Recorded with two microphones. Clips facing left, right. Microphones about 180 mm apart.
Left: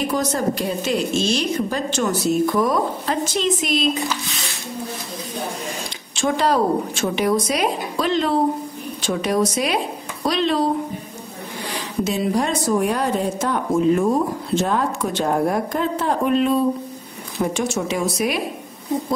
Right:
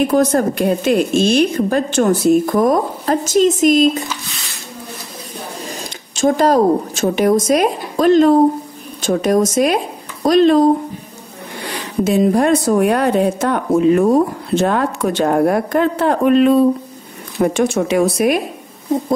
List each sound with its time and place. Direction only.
0.0 s a woman's voice: 55° right (ahead or behind)
5.7 s a woman's voice: 40° right (ahead or behind)
12.0 s a woman's voice: 55° right (ahead or behind)